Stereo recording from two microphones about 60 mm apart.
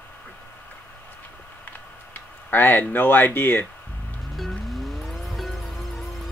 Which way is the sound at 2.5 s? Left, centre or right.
Left.